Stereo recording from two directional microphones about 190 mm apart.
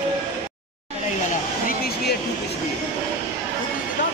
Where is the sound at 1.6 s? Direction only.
55° left (ahead or behind).